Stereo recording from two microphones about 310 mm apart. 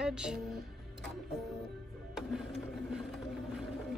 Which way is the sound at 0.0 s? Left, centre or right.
Centre.